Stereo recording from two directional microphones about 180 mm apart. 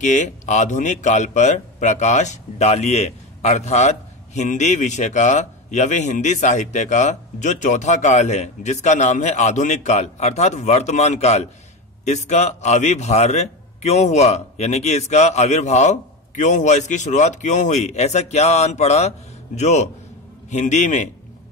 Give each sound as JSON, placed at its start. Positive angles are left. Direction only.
{"t": 0.0, "sound": "speech", "side_deg": 40}